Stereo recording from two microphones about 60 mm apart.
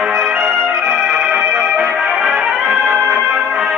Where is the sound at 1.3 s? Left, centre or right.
Centre.